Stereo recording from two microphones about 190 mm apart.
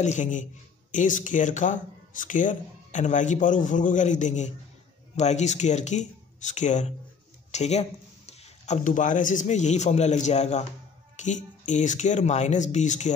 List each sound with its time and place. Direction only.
0.0 s speech: 40° left (ahead or behind)